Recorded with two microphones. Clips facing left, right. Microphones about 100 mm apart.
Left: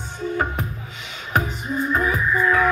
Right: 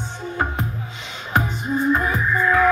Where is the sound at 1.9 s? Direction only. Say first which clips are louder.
Even; 25° right (ahead or behind).